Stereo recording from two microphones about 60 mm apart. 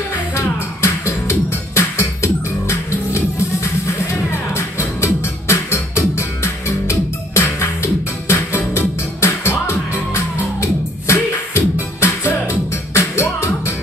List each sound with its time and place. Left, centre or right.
0.3 s music: left